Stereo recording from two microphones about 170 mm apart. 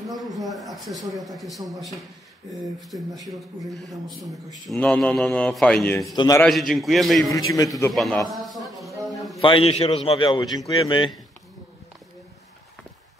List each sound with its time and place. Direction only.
0.1 s a man's voice: centre (ahead or behind)
2.9 s speech: 20° right (ahead or behind)
3.9 s a man's voice: centre (ahead or behind)
6.1 s speech: 20° left (ahead or behind)
6.4 s a man's voice: centre (ahead or behind)
7.3 s speech: 20° left (ahead or behind)
7.9 s a man's voice: centre (ahead or behind)
8.7 s a sound: centre (ahead or behind)
9.4 s a man's voice: 30° left (ahead or behind)